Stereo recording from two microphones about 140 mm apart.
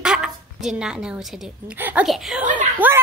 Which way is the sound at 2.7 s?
15° right (ahead or behind).